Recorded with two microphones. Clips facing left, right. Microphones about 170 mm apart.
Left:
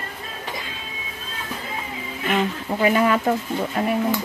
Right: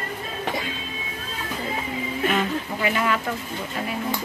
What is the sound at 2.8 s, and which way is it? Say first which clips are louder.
Speech: left 7 dB; 35° left (ahead or behind).